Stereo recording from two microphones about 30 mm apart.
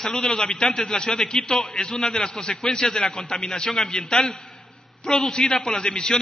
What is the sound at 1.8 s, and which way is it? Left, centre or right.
A man's voice, left.